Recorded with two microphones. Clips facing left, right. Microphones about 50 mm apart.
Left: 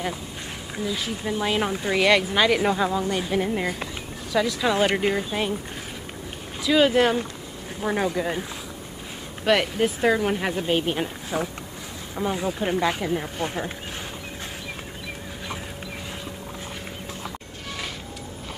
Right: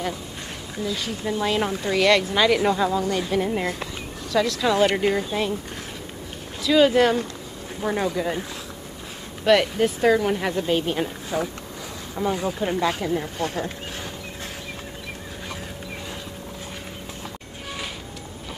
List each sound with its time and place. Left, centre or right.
0.7 s speech: centre
6.6 s speech: centre
13.4 s speech: left